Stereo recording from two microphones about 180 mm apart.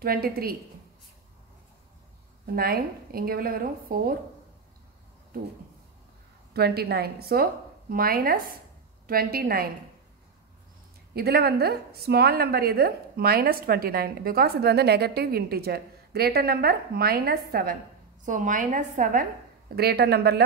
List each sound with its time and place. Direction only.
0.0 s a woman's voice: 55° right (ahead or behind)
2.4 s a woman's voice: 55° right (ahead or behind)
6.5 s a woman's voice: 60° right (ahead or behind)
11.1 s a woman's voice: 60° right (ahead or behind)
18.2 s a woman's voice: 45° right (ahead or behind)
19.7 s a woman's voice: 60° right (ahead or behind)